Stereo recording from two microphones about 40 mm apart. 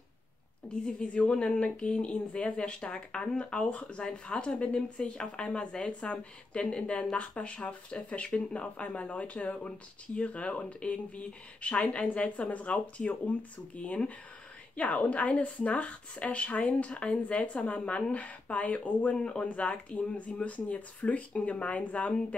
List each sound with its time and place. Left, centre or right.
1.0 s speech: left
19.1 s speech: left